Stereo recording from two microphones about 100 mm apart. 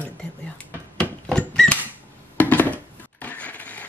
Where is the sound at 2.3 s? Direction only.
15° left (ahead or behind).